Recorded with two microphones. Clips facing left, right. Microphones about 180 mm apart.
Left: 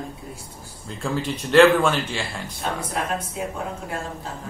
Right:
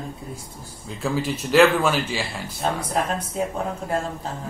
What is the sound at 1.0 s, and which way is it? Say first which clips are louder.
Speech: right 2 dB; 5° right (ahead or behind).